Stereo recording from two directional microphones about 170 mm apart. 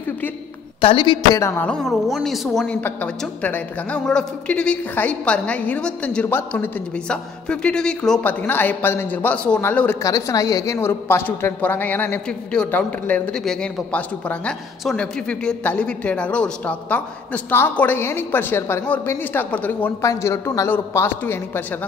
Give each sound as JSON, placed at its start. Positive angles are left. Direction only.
{"t": 0.7, "sound": "a man's voice", "side_deg": 30}
{"t": 1.4, "sound": "a woman's voice", "side_deg": 10}